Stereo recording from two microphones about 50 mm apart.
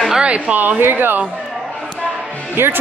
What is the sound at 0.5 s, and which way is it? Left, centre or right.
Speech, right.